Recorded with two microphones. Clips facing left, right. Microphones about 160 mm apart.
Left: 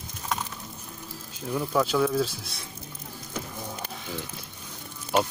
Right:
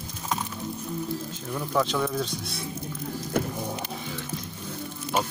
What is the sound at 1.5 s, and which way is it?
Speech, 5° left (ahead or behind).